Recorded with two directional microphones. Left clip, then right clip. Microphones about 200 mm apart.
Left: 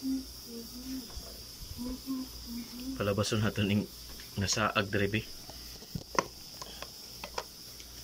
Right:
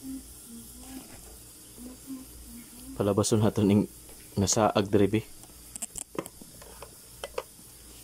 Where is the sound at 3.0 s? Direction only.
25° right (ahead or behind).